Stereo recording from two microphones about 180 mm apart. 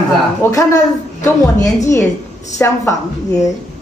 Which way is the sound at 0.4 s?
20° left (ahead or behind).